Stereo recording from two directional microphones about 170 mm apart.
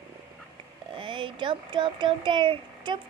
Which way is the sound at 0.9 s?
30° right (ahead or behind).